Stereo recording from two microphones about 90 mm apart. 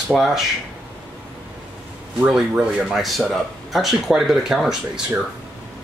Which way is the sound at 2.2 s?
10° right (ahead or behind).